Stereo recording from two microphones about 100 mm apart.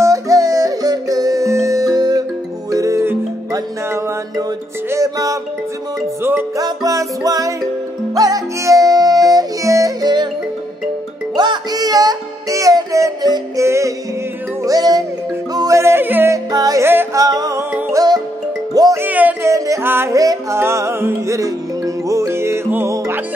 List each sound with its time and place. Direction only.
0.0 s music: 35° right (ahead or behind)
6.5 s music: 35° right (ahead or behind)
11.3 s music: 45° right (ahead or behind); by 16.3 s 20° right (ahead or behind)
16.5 s music: 40° right (ahead or behind)
16.8 s music: 20° right (ahead or behind)
17.1 s music: 35° right (ahead or behind)
18.9 s music: 15° right (ahead or behind)
19.4 s music: 30° right (ahead or behind)
20.2 s music: 35° right (ahead or behind)